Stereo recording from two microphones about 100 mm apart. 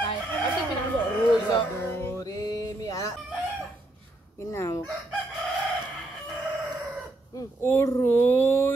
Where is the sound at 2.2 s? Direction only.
35° left (ahead or behind).